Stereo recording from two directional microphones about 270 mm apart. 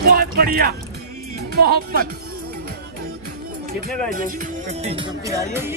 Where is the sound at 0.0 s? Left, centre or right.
Right.